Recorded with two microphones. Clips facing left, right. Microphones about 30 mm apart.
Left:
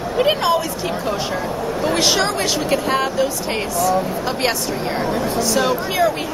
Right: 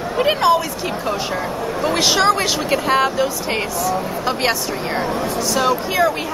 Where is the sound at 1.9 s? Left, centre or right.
Centre.